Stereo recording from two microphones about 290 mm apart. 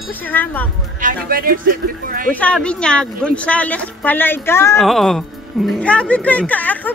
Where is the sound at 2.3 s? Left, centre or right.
Centre.